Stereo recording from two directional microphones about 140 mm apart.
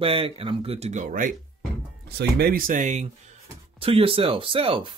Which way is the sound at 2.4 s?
90° right.